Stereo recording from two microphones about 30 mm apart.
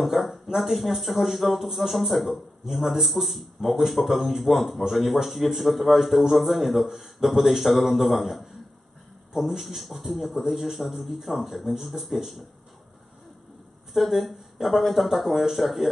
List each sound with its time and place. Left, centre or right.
0.0 s a man's voice: centre
13.9 s a man's voice: centre